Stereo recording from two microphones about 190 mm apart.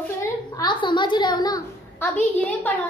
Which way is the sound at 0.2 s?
20° left (ahead or behind).